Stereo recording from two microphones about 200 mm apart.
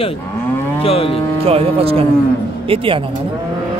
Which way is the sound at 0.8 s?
30° left (ahead or behind).